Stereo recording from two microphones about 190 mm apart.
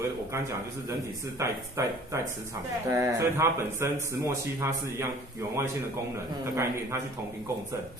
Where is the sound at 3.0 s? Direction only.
15° right (ahead or behind).